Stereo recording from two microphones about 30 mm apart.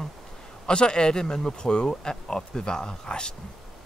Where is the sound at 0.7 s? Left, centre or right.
Left.